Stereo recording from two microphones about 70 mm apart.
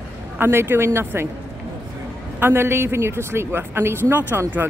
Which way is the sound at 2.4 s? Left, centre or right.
Right.